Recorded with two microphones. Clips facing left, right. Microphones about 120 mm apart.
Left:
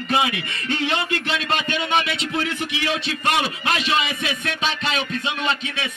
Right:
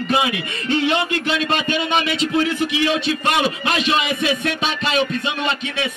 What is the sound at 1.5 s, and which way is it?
Speech, 20° right (ahead or behind).